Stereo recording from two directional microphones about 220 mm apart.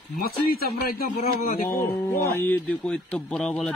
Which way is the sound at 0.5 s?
45° left (ahead or behind).